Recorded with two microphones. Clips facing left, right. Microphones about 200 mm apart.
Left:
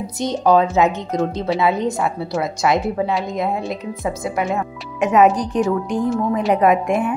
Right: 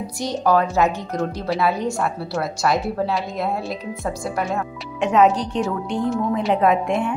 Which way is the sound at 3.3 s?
15° left (ahead or behind).